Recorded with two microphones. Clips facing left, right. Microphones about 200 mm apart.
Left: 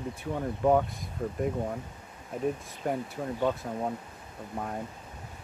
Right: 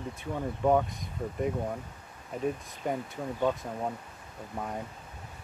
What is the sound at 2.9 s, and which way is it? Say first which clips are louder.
Speech: left 1 dB; 5° left (ahead or behind).